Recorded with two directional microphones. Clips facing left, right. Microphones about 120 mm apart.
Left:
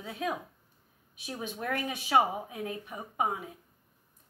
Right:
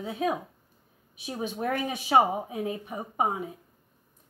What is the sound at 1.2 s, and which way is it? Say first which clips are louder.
Speech: right 5 dB; 35° right (ahead or behind).